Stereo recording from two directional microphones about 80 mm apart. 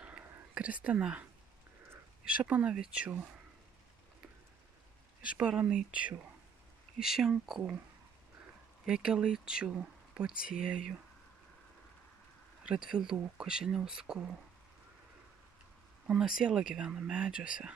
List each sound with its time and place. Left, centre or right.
0.0 s whispering: centre
2.2 s speech: centre
5.2 s speech: centre
7.0 s speech: centre
8.8 s speech: centre
12.6 s speech: centre
16.1 s speech: centre